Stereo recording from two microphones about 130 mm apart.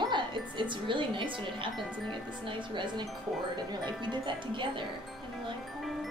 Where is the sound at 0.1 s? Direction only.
40° right (ahead or behind).